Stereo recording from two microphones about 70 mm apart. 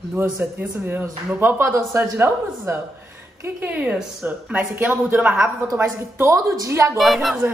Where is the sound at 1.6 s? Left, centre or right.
Right.